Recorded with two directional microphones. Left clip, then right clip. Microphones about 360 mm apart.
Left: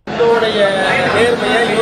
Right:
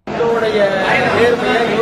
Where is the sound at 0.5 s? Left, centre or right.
Centre.